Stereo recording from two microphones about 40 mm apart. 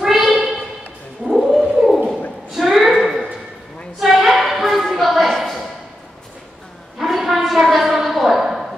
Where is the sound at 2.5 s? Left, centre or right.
Centre.